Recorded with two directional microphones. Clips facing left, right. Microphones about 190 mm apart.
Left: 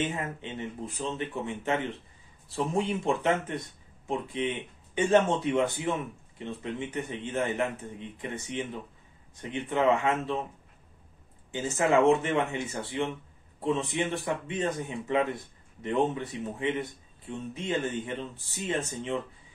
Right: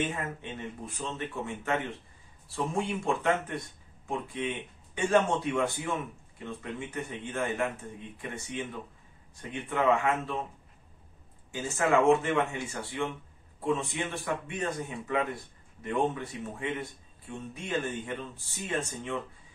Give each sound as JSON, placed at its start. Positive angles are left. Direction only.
{"t": 0.0, "sound": "a man's voice", "side_deg": 20}
{"t": 11.5, "sound": "a man's voice", "side_deg": 20}